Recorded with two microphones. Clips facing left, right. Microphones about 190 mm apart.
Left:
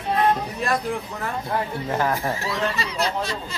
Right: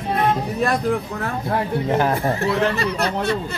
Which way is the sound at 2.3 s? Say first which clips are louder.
Right 6 dB; 60° right (ahead or behind).